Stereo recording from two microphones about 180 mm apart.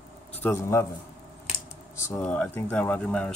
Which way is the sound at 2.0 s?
10° left (ahead or behind).